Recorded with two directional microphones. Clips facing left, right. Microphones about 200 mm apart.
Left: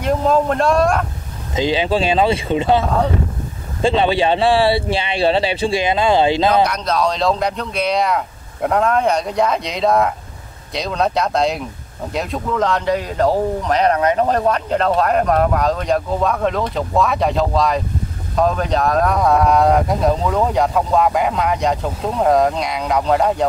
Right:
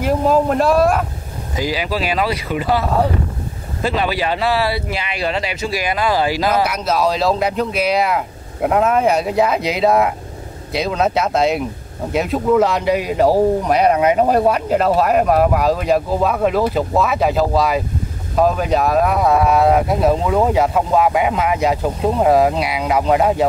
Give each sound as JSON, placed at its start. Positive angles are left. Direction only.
{"t": 0.0, "sound": "speech", "side_deg": -5}
{"t": 1.5, "sound": "speech", "side_deg": 25}
{"t": 3.8, "sound": "speech", "side_deg": 25}
{"t": 6.5, "sound": "speech", "side_deg": -5}